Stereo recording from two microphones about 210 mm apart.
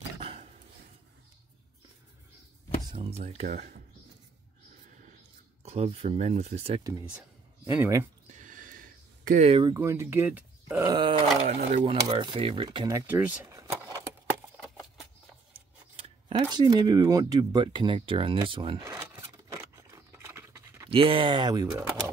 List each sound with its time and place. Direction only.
0.2 s dog: 30° right (ahead or behind)
2.9 s speech: 30° right (ahead or behind)
5.6 s speech: 30° right (ahead or behind)
6.8 s speech: 15° right (ahead or behind)
8.4 s a sound: 40° right (ahead or behind); by 9.8 s 25° right (ahead or behind)
9.8 s speech: 10° right (ahead or behind)
11.4 s speech: 30° right (ahead or behind); by 13.7 s 10° right (ahead or behind)
15.5 s a sound: 25° right (ahead or behind)
20.9 s speech: 25° right (ahead or behind)